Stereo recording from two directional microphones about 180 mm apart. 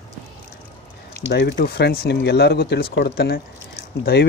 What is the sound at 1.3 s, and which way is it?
Speech, 65° left (ahead or behind).